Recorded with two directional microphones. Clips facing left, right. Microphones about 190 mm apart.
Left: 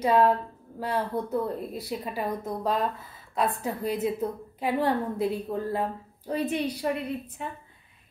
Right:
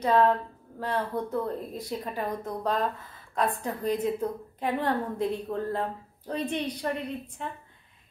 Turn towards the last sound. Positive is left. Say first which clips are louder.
# left 2 dB
turn(degrees=5)  # may be behind; listen again after turning